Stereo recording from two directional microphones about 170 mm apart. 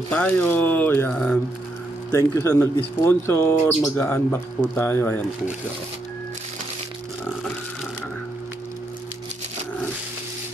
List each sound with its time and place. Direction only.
0.1 s speech: 10° left (ahead or behind)
2.0 s speech: 15° left (ahead or behind)